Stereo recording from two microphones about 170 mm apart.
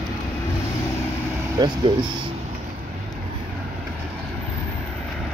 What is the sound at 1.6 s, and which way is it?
Speech, 20° right (ahead or behind).